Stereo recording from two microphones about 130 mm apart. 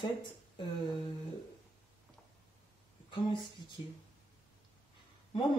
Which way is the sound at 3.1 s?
40° left (ahead or behind).